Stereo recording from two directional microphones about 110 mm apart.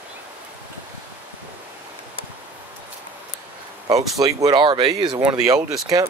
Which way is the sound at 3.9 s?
35° right (ahead or behind).